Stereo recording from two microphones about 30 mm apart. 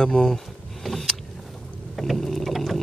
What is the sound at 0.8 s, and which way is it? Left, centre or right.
Vehicle, centre.